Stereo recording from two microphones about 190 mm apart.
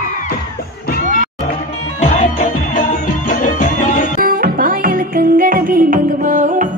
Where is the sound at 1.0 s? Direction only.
40° right (ahead or behind).